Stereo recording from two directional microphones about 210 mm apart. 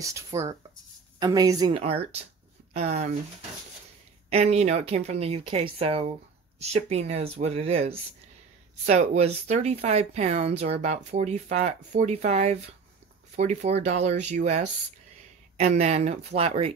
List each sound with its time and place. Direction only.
0.0 s speech: 15° right (ahead or behind)
1.8 s speech: 30° right (ahead or behind)
4.3 s speech: 30° right (ahead or behind)